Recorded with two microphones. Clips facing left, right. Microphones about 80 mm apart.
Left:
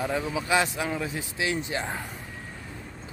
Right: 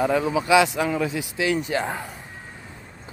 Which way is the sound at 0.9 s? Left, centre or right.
Right.